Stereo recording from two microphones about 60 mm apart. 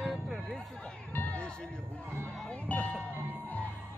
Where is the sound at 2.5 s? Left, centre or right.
Left.